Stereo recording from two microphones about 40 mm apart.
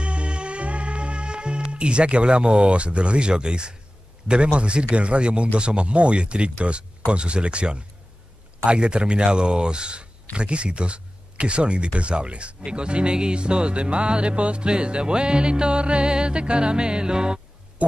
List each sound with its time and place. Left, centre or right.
0.0 s music: right
4.3 s speech: right